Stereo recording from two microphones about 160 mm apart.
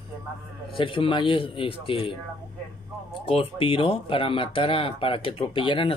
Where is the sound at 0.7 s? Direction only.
35° left (ahead or behind).